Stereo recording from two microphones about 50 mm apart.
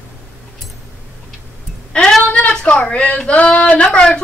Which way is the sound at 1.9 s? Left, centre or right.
Centre.